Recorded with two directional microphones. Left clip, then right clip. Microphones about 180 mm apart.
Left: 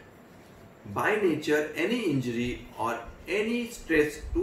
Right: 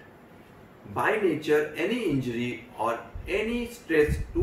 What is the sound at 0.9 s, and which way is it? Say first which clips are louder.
Speech: right 1 dB; 15° left (ahead or behind).